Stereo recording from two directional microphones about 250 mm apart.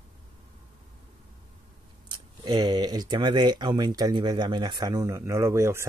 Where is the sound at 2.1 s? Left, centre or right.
Centre.